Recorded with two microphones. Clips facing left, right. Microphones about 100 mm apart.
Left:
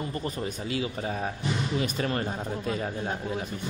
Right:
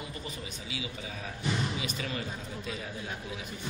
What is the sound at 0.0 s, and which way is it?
A man's voice, 50° left (ahead or behind).